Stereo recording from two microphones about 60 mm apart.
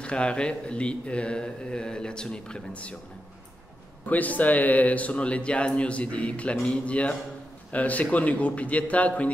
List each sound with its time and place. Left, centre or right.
0.0 s speech: centre
4.0 s speech: left